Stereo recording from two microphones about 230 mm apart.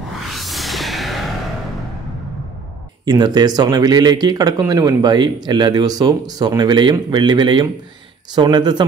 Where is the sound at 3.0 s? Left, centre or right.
Centre.